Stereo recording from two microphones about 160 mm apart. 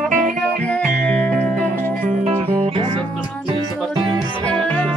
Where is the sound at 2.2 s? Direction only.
40° right (ahead or behind).